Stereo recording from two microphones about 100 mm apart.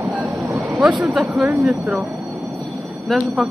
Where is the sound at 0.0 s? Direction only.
15° right (ahead or behind).